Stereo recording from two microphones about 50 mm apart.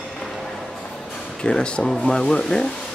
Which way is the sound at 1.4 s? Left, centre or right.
Centre.